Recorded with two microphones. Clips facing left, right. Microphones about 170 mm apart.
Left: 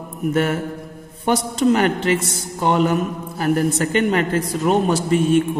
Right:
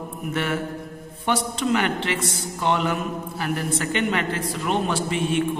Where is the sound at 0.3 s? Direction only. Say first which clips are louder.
Left 6 dB; 45° left (ahead or behind).